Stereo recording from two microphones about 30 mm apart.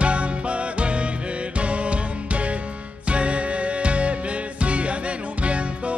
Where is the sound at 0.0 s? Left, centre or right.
Right.